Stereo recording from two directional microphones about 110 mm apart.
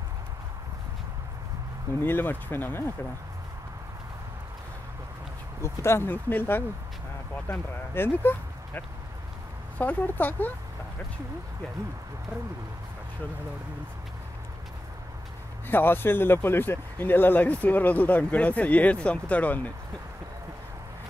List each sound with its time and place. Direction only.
2.0 s speech: 20° left (ahead or behind)
5.6 s speech: 25° left (ahead or behind)
7.9 s speech: 20° left (ahead or behind)
15.7 s speech: 20° left (ahead or behind)